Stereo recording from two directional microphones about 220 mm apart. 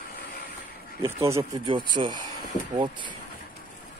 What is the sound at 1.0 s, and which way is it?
Speech, 10° right (ahead or behind).